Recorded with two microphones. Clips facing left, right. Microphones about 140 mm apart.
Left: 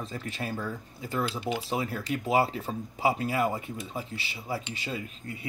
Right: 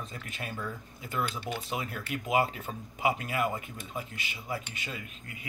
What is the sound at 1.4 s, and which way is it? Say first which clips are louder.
Speech: left 5 dB; 10° left (ahead or behind).